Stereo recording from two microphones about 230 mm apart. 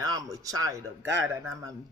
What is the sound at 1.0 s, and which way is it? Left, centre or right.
Speech, right.